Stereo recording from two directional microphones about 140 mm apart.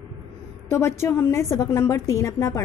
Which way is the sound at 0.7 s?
20° left (ahead or behind).